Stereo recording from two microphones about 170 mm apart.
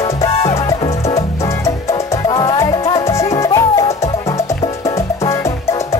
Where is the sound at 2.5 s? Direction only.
20° left (ahead or behind).